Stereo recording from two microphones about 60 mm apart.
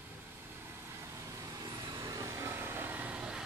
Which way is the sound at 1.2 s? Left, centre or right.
Right.